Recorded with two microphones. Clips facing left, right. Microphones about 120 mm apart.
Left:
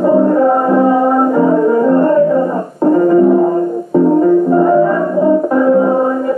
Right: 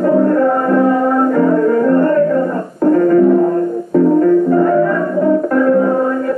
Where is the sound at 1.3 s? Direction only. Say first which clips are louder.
Left 1 dB; 15° left (ahead or behind).